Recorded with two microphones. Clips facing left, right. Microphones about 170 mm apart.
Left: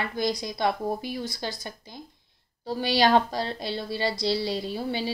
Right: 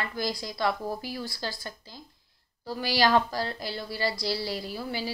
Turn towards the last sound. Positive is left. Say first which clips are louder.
# left 4 dB
turn(degrees=25)  # may be behind; listen again after turning